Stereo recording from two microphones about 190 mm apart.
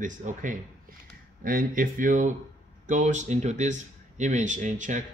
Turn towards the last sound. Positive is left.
turn(degrees=-40)  # may be behind; listen again after turning